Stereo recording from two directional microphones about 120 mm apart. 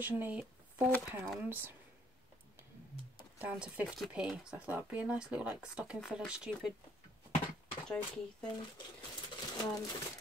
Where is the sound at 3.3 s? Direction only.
10° right (ahead or behind).